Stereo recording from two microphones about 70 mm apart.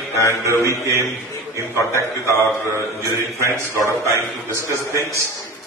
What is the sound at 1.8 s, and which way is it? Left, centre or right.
Speech, left.